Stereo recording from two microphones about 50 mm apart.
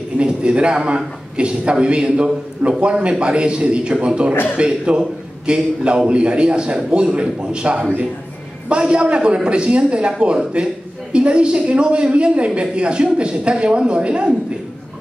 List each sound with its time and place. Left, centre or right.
0.2 s a man's voice: right